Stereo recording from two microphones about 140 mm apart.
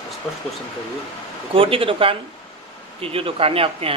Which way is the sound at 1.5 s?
40° right (ahead or behind).